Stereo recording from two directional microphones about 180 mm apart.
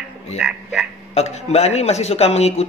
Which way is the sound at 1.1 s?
40° left (ahead or behind).